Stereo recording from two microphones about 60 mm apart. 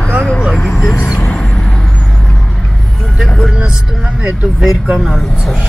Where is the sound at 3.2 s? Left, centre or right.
Centre.